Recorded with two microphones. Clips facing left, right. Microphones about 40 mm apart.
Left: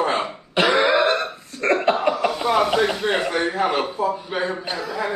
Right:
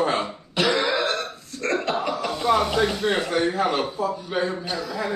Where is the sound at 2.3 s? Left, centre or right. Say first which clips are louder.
Left 2 dB; centre.